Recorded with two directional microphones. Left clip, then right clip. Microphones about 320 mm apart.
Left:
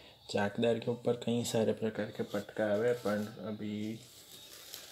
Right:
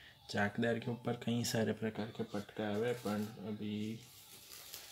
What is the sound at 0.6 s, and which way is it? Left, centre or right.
Speech, centre.